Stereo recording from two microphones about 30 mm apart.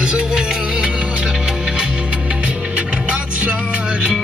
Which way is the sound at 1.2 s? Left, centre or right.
Right.